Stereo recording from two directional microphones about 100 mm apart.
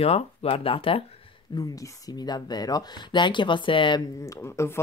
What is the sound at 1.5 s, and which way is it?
Speech, 45° left (ahead or behind).